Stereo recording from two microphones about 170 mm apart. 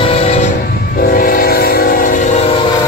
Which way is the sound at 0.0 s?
35° left (ahead or behind).